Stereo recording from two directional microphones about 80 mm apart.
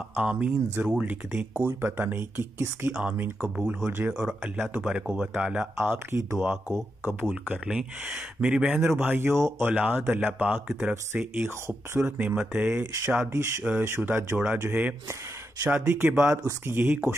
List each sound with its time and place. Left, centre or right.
0.2 s speech: centre
1.5 s speech: right; by 5.7 s centre
5.8 s speech: right
7.6 s speech: centre
8.7 s speech: right
15.6 s speech: right